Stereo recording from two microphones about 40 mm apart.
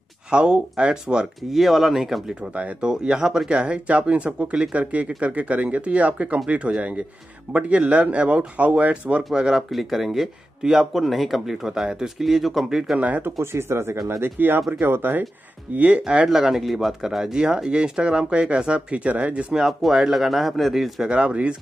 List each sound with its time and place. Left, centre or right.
0.3 s speech: right
1.5 s a man's voice: centre
2.8 s speech: centre
3.4 s speech: right
7.5 s speech: right
9.3 s speech: centre
9.7 s a man's voice: centre
12.9 s speech: right
13.2 s speech: right
15.7 s speech: right
16.0 s speech: right
16.3 s speech: centre; by 19.4 s right
19.6 s a man's voice: centre
21.0 s speech: right